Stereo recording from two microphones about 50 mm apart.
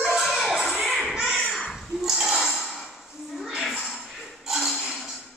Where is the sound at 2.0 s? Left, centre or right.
Centre.